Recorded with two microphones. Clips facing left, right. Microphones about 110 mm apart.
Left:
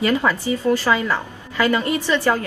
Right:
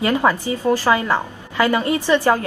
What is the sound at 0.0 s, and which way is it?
A woman's voice, 20° right (ahead or behind).